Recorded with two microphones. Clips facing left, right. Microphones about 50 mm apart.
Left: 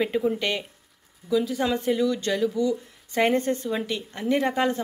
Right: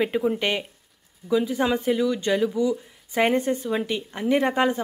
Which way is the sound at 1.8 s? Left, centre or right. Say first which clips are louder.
Right 1 dB; centre.